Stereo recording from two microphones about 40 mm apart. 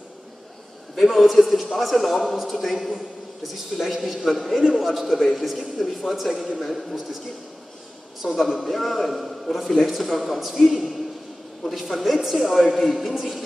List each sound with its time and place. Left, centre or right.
0.9 s a man's voice: centre
8.4 s a man's voice: centre